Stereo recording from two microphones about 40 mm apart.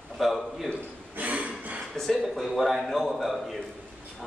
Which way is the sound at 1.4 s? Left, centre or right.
Right.